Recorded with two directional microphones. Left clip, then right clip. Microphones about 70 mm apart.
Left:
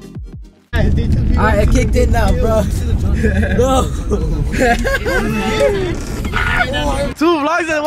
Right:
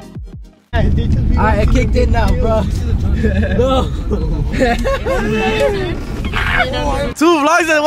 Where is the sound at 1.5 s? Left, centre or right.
Left.